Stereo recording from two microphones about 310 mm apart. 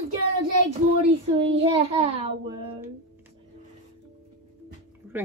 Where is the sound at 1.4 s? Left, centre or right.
Centre.